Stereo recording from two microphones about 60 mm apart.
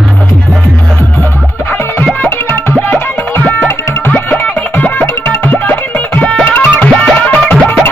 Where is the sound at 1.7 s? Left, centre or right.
Left.